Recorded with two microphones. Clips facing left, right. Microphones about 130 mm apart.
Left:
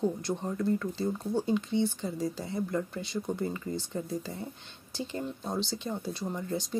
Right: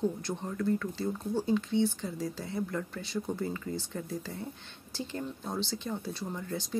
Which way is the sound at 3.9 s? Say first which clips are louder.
Left 3 dB; 20° left (ahead or behind).